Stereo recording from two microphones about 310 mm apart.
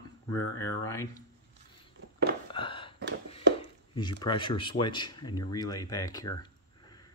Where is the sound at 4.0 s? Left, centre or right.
Centre.